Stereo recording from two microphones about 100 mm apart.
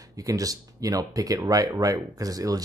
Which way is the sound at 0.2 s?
35° right (ahead or behind).